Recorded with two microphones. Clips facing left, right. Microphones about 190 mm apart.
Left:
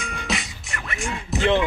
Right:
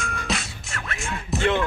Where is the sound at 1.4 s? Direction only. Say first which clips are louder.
Left 3 dB; 15° left (ahead or behind).